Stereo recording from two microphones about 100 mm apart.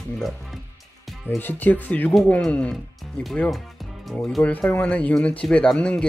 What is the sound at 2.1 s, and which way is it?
Speech, 5° left (ahead or behind).